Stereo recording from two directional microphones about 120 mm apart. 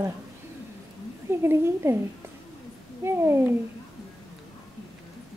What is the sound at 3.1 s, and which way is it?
Speech, 20° right (ahead or behind).